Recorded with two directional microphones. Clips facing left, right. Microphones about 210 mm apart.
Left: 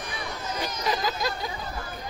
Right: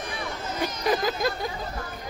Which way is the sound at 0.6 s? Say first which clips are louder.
Right 4 dB; 50° right (ahead or behind).